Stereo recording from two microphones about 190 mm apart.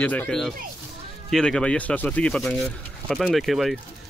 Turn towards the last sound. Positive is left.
turn(degrees=0)  # may be behind; listen again after turning